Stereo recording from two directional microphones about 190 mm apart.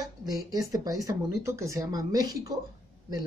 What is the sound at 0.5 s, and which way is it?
Speech, 20° right (ahead or behind).